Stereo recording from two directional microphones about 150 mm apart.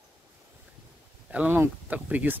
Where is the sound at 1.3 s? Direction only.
10° right (ahead or behind).